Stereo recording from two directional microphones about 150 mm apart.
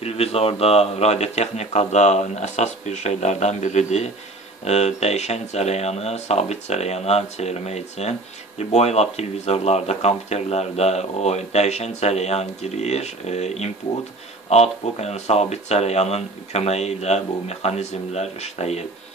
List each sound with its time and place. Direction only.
0.0 s speech: 40° left (ahead or behind)